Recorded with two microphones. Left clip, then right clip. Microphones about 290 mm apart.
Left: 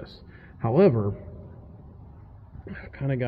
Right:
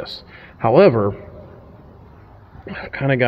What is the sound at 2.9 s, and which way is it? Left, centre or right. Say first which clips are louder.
Speech: right 12 dB; right.